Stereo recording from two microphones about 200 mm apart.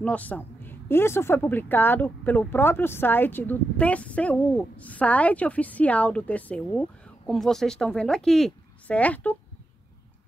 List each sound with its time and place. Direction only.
0.0 s speech: 5° left (ahead or behind)